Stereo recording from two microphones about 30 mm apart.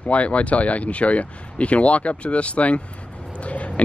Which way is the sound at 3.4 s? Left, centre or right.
Left.